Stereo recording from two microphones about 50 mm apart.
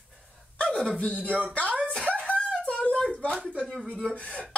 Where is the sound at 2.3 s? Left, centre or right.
Left.